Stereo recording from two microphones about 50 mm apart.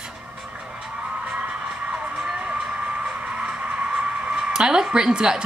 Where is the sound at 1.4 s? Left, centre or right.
Right.